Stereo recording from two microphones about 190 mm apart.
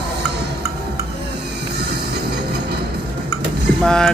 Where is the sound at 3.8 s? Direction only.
5° left (ahead or behind).